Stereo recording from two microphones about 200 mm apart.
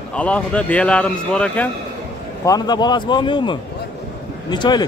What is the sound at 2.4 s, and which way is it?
A man's voice, 20° left (ahead or behind).